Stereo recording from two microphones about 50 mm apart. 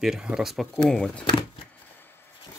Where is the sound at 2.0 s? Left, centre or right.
Left.